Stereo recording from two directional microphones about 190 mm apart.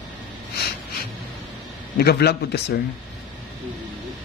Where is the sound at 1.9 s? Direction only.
55° left (ahead or behind).